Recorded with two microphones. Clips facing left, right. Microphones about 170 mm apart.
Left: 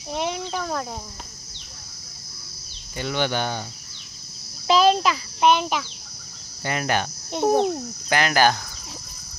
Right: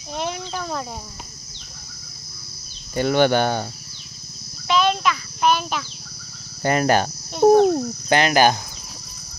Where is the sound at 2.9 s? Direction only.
50° right (ahead or behind).